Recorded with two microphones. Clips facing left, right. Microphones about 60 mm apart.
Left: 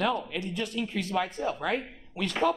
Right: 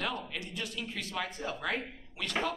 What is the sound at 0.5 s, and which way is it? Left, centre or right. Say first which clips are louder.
Speech: left 8 dB; left.